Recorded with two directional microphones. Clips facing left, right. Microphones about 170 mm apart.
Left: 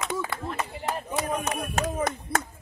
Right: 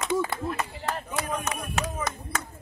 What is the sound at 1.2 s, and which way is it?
Clapping, 40° left (ahead or behind).